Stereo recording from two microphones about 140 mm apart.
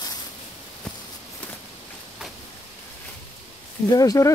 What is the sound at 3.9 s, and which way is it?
Speech, 25° left (ahead or behind).